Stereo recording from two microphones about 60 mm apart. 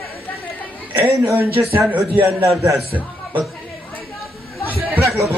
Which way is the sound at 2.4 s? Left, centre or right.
Right.